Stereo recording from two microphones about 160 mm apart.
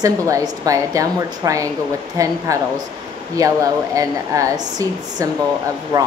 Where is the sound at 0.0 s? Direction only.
20° right (ahead or behind).